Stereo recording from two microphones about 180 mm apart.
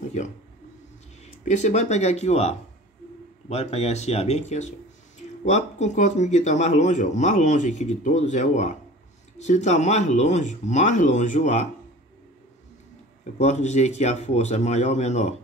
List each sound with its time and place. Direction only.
1.2 s a man's voice: 40° left (ahead or behind)
13.4 s a man's voice: 40° left (ahead or behind)